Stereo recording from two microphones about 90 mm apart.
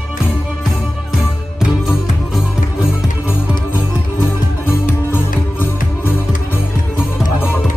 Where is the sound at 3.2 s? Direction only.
25° right (ahead or behind).